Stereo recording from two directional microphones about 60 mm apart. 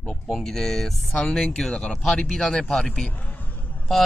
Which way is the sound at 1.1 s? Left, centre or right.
Left.